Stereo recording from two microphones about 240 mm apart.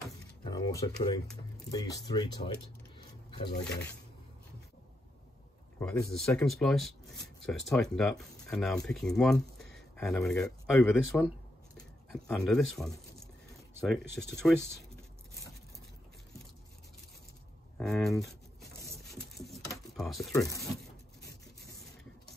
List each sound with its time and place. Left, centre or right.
0.4 s a sound: centre
1.7 s speech: centre
6.1 s speech: centre
17.7 s speech: centre
19.4 s a sound: centre
20.3 s speech: centre
21.2 s printer: left